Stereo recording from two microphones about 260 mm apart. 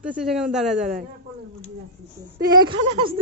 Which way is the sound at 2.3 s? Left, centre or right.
Centre.